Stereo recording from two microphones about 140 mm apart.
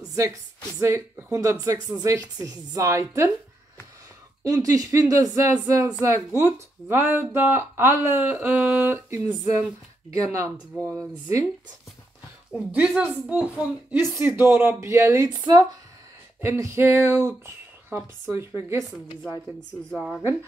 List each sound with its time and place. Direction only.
0.0 s a sound: 25° right (ahead or behind)
0.7 s a woman's voice: 20° right (ahead or behind)
4.5 s a woman's voice: 25° right (ahead or behind)
12.7 s a woman's voice: 10° right (ahead or behind)
19.9 s a woman's voice: 5° left (ahead or behind)